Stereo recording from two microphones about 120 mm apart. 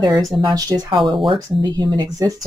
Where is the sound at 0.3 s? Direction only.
30° right (ahead or behind).